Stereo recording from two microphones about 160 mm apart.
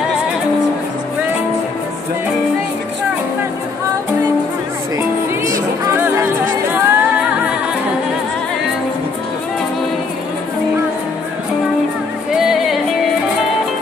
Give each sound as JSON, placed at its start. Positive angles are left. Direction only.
{"t": 5.5, "sound": "music", "side_deg": -20}
{"t": 12.4, "sound": "music", "side_deg": 0}